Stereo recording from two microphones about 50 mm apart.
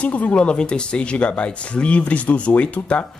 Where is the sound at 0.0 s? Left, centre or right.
Left.